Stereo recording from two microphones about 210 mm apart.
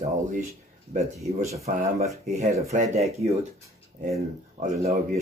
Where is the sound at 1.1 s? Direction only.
15° right (ahead or behind).